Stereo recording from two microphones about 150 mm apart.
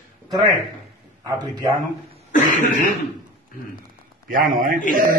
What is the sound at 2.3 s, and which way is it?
Cough, 60° left (ahead or behind).